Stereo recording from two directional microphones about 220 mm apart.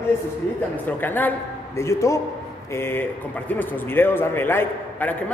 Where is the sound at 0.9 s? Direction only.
10° left (ahead or behind).